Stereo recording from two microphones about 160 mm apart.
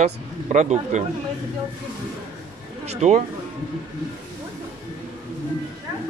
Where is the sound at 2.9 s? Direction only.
45° right (ahead or behind).